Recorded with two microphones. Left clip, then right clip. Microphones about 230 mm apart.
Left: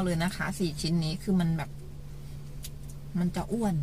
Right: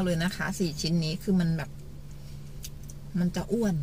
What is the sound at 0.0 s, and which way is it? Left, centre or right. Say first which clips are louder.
Speech: right 1 dB; centre.